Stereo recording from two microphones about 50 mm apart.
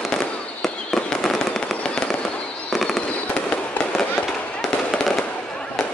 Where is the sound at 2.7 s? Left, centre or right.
Centre.